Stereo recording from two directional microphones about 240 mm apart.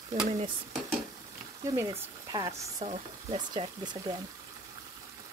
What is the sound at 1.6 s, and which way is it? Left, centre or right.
Speech, centre.